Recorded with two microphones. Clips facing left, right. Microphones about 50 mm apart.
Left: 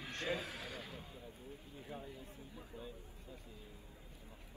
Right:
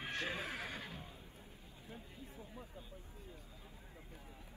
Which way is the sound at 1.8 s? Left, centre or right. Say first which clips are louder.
Left 5 dB; left.